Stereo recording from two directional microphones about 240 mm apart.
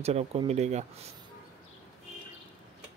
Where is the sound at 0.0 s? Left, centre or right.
Right.